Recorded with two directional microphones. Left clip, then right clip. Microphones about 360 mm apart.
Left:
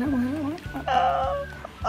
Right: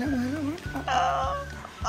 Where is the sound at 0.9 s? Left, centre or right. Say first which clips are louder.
Left 3 dB; centre.